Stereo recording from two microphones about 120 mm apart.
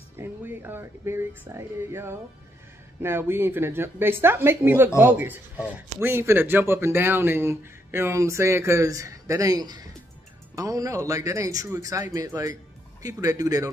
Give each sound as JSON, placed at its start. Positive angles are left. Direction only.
{"t": 0.2, "sound": "a man's voice", "side_deg": -20}